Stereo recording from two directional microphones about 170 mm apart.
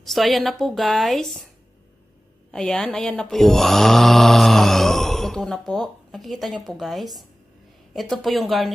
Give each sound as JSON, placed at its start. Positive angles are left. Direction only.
{"t": 0.0, "sound": "speech", "side_deg": 0}
{"t": 2.5, "sound": "speech", "side_deg": 5}